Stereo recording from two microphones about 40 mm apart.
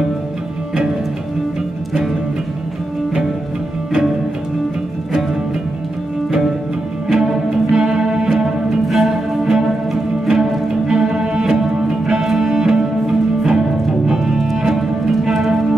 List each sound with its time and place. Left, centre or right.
7.1 s music: centre